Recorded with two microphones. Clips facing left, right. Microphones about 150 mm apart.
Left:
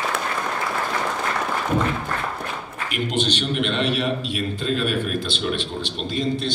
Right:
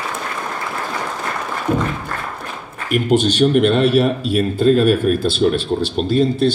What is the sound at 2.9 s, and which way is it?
A man's voice, 45° right (ahead or behind).